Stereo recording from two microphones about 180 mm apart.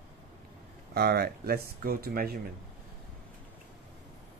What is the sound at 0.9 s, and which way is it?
Speech, 65° right (ahead or behind).